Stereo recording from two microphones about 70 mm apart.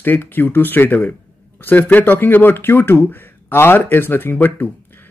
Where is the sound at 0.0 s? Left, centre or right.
Left.